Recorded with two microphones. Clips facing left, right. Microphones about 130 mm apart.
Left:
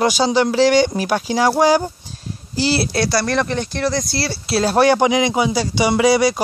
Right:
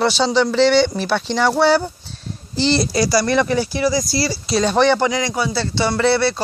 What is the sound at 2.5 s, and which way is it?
Speech, 5° left (ahead or behind).